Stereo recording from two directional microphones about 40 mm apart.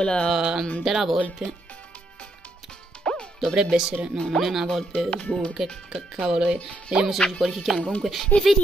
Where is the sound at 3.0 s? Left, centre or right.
Centre.